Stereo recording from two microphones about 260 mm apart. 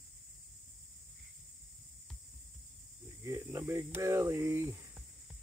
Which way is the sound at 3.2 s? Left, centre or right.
Centre.